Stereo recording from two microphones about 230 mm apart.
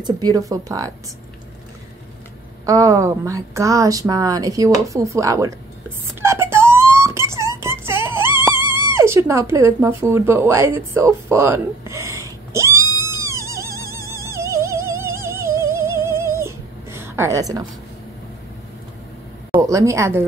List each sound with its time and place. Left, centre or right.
0.0 s a woman's voice: centre
2.6 s a woman's voice: centre
6.2 s wail: centre
8.6 s a sound: centre
8.9 s speech: centre
13.0 s music: centre
19.5 s a woman's voice: centre